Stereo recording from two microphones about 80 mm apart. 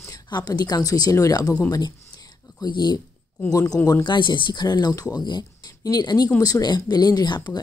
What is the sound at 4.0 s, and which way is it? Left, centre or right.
Speech, left.